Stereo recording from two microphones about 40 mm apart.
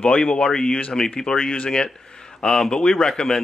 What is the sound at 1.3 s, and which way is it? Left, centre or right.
A man's voice, left.